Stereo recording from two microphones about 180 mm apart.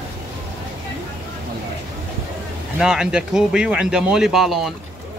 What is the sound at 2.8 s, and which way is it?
Speech, 5° right (ahead or behind).